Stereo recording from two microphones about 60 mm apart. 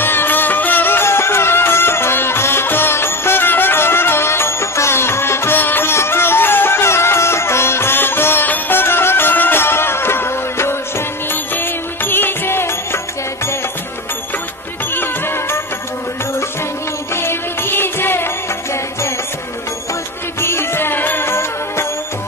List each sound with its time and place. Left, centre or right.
0.0 s music: left
15.0 s music: left
17.1 s music: left
20.3 s music: left